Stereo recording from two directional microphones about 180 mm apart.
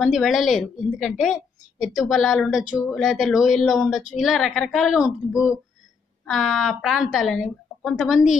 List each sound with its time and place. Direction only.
0.0 s a woman's voice: centre (ahead or behind)